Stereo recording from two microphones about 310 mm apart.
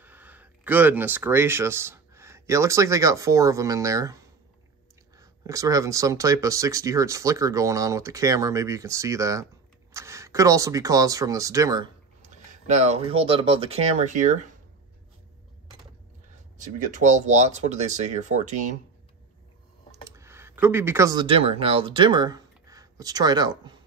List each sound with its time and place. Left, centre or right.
0.0 s speech: centre
5.2 s speech: centre
12.2 s speech: right
16.5 s speech: right
20.1 s speech: centre